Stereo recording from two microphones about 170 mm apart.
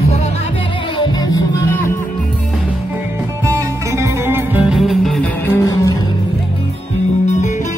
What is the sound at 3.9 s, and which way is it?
Music, 15° right (ahead or behind).